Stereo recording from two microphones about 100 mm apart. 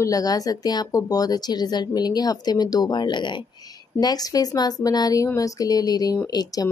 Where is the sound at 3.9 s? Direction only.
40° left (ahead or behind).